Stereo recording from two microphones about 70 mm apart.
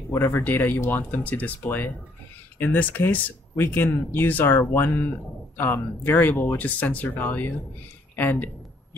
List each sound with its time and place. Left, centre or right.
0.1 s speech: left